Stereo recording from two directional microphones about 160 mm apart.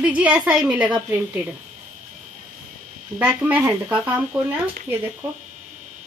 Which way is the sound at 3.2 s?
10° right (ahead or behind).